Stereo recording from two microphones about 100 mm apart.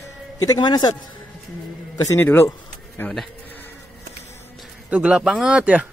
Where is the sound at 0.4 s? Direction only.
40° left (ahead or behind).